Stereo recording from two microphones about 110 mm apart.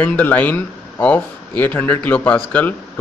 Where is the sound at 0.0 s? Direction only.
15° left (ahead or behind).